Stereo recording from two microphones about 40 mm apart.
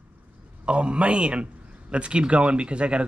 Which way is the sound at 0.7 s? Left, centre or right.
Right.